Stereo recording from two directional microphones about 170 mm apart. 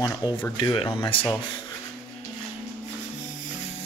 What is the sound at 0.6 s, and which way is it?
Speech, 30° left (ahead or behind).